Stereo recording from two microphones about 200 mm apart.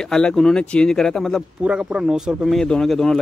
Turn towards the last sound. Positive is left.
turn(degrees=0)  # may be behind; listen again after turning